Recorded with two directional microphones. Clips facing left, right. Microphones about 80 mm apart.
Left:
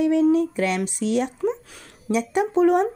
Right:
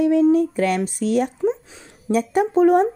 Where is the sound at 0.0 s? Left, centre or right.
Right.